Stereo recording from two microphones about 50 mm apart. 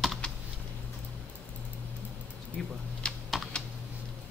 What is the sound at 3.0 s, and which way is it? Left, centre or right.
Typing, left.